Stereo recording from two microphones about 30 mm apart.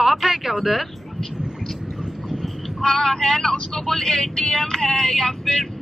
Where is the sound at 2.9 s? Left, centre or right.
Centre.